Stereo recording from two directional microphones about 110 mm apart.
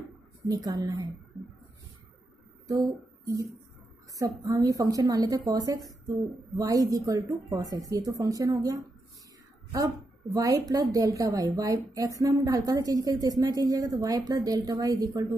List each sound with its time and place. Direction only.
0.5 s a woman's voice: 35° right (ahead or behind)
2.7 s speech: 35° right (ahead or behind)
4.5 s a woman's voice: 35° right (ahead or behind)
10.3 s a woman's voice: 30° right (ahead or behind)